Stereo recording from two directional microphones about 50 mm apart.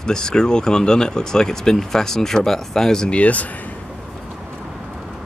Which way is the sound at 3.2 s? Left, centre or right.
Left.